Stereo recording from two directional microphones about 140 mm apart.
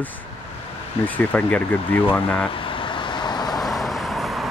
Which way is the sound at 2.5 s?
40° left (ahead or behind).